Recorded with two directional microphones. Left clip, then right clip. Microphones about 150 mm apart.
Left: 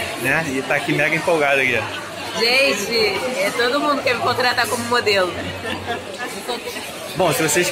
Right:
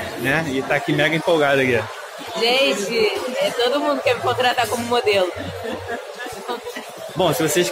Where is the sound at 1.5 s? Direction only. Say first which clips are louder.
Left 1 dB; 70° right (ahead or behind).